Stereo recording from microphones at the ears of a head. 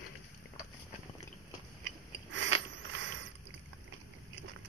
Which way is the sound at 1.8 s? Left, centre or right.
Right.